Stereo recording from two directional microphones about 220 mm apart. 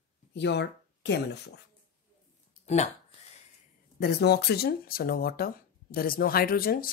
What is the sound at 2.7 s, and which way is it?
Speech, 30° left (ahead or behind).